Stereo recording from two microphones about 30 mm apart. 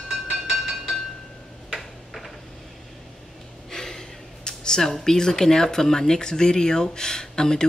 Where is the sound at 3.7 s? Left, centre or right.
Centre.